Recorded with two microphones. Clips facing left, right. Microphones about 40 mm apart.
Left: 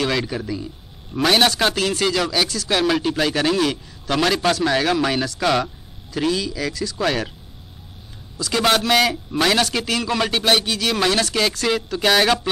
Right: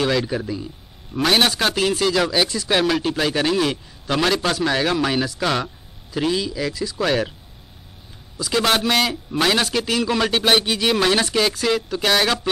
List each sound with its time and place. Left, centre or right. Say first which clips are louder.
0.1 s a man's voice: right 1 dB; centre
2.8 s a man's voice: left 3 dB; centre
7.0 s a man's voice: right 2 dB; centre
8.7 s a man's voice: left 2 dB; centre
10.4 s speech: right 1 dB; centre
11.6 s a man's voice: left 1 dB; centre